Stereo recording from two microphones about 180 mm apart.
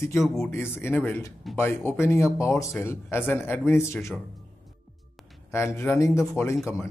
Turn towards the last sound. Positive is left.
turn(degrees=15)  # may be behind; listen again after turning